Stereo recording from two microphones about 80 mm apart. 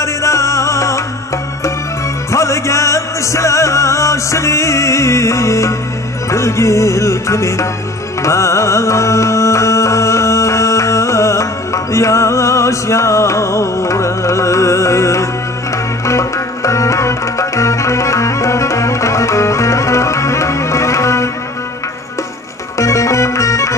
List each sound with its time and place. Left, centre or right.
0.0 s music: left
2.3 s music: left
22.8 s music: left